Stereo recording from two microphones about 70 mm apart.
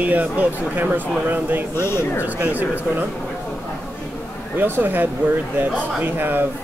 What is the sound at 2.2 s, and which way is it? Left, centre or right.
Speech, right.